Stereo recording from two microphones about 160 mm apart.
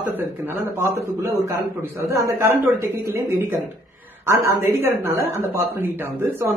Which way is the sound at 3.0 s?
65° right (ahead or behind).